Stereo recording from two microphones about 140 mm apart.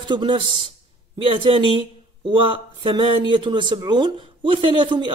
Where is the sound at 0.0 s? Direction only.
35° right (ahead or behind).